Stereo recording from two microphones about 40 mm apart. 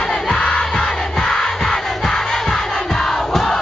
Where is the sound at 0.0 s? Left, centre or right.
Centre.